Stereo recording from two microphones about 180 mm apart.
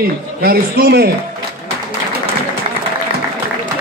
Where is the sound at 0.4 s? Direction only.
55° right (ahead or behind).